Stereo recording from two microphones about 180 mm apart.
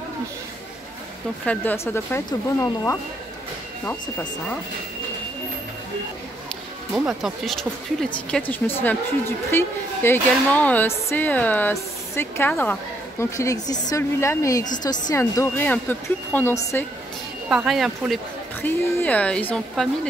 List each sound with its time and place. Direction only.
1.4 s speech: 10° left (ahead or behind)
6.9 s speech: centre (ahead or behind)
17.5 s speech: 5° right (ahead or behind)
18.6 s speech: 10° left (ahead or behind)